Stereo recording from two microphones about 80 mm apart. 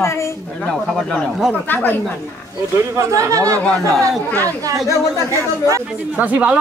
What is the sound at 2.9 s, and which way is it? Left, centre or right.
Speech, right.